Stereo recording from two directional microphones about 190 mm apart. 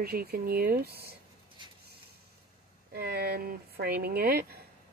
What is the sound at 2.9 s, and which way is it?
Speech, 55° right (ahead or behind).